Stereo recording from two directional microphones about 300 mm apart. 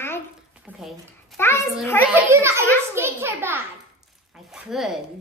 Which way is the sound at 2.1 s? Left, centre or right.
Centre.